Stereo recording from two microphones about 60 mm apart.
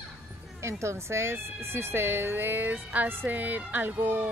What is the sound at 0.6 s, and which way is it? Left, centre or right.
Speech, right.